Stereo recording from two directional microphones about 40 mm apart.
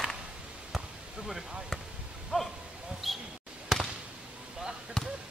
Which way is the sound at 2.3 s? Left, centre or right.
Centre.